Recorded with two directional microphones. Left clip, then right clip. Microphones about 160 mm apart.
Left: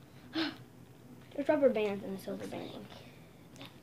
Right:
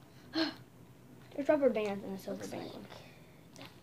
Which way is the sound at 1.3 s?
5° left (ahead or behind).